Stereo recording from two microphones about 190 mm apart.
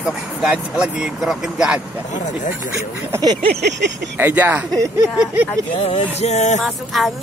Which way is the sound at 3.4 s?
60° right (ahead or behind).